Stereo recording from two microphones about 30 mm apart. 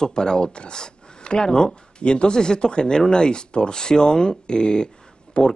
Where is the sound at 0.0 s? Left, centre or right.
Left.